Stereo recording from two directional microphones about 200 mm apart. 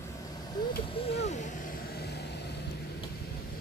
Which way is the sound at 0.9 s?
30° left (ahead or behind).